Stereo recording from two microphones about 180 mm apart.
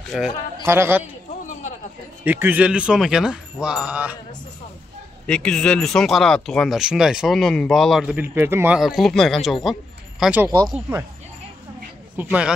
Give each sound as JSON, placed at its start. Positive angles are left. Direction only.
{"t": 0.1, "sound": "speech", "side_deg": 0}
{"t": 0.7, "sound": "speech", "side_deg": -15}
{"t": 2.2, "sound": "speech", "side_deg": -10}
{"t": 5.2, "sound": "speech", "side_deg": 5}
{"t": 8.2, "sound": "speech", "side_deg": -10}
{"t": 10.4, "sound": "speech", "side_deg": -15}
{"t": 12.2, "sound": "speech", "side_deg": -5}